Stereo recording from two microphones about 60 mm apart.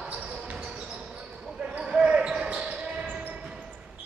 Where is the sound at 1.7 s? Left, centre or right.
Centre.